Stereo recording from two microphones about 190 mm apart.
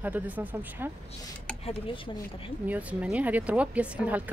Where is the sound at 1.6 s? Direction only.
30° left (ahead or behind).